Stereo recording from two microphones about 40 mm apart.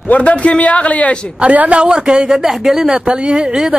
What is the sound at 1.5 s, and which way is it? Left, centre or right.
Speech, right.